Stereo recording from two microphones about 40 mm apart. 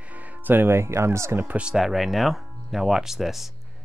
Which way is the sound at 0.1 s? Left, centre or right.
Right.